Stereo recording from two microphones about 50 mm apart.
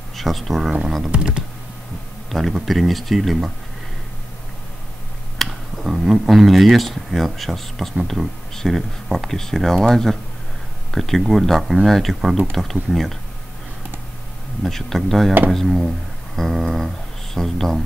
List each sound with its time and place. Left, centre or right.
0.1 s speech: centre
1.1 s speech: centre
2.3 s speech: centre
5.4 s speech: centre
14.6 s speech: centre